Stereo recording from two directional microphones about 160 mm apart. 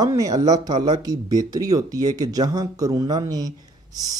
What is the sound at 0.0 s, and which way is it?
A man's voice, 20° right (ahead or behind).